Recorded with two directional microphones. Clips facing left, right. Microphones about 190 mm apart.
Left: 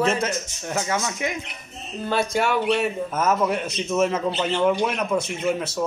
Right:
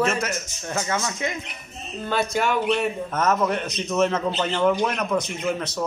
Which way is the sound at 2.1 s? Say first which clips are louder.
Left 1 dB; 10° left (ahead or behind).